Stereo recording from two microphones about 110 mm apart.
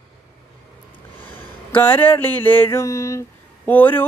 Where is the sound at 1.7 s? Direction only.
15° left (ahead or behind).